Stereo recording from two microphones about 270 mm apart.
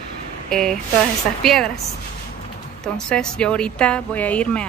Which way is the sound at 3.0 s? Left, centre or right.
Centre.